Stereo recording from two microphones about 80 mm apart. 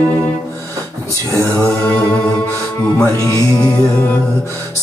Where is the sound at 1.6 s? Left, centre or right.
Centre.